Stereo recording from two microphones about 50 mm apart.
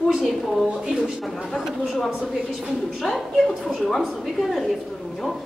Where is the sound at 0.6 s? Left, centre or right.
Right.